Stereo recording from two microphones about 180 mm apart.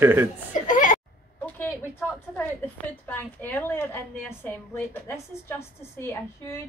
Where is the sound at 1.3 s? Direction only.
10° left (ahead or behind).